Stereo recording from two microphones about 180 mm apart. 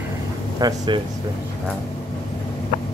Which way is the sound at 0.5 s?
25° right (ahead or behind).